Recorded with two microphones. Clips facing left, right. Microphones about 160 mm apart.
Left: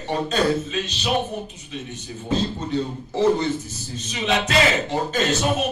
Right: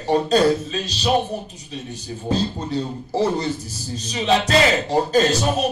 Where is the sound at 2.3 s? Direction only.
35° right (ahead or behind).